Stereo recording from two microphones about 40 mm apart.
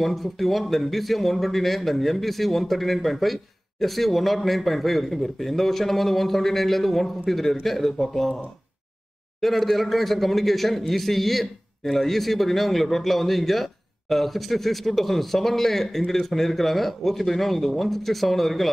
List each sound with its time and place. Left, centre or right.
0.0 s speech: centre
9.4 s speech: centre